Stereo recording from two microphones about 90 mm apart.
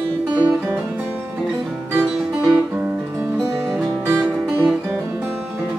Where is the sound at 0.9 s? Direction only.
20° right (ahead or behind).